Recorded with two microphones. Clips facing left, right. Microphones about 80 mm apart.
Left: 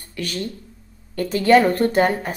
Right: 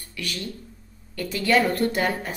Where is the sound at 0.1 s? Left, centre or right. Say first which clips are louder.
Left 5 dB; left.